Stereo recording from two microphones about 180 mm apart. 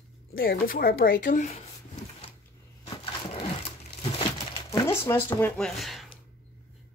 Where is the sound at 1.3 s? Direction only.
40° left (ahead or behind).